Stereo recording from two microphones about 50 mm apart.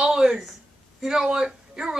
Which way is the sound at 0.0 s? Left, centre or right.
Centre.